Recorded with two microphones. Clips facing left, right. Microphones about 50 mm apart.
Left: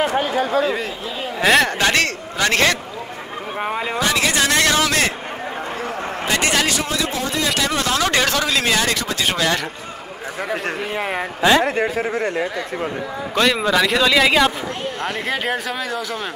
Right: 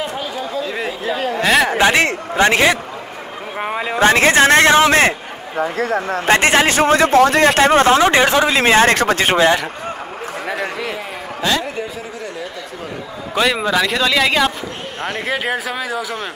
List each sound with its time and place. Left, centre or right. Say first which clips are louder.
1.0 s speech: right 7 dB; right
1.4 s a man's voice: even; centre
1.8 s a man's voice: right 4 dB; centre
4.0 s speech: right 9 dB; right
6.2 s speech: right 6 dB; right
6.8 s a man's voice: right 10 dB; right
7.2 s speech: right 11 dB; right
11.6 s speech: left 6 dB; left
13.3 s a man's voice: right 1 dB; centre